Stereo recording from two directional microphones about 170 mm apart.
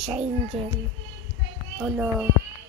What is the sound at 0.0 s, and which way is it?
Speech, 35° right (ahead or behind).